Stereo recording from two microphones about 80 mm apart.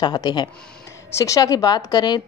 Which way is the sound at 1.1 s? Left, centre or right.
Left.